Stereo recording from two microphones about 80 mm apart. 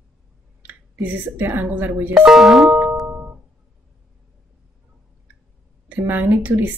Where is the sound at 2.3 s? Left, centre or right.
Centre.